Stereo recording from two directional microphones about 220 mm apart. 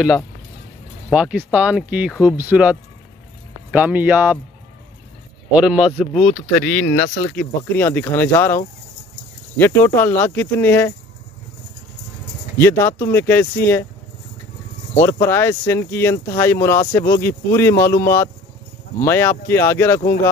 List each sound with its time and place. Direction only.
1.1 s speech: 5° right (ahead or behind)
5.5 s speech: 5° right (ahead or behind)
9.6 s speech: 10° left (ahead or behind)
12.5 s speech: 10° left (ahead or behind)
15.0 s speech: 10° left (ahead or behind)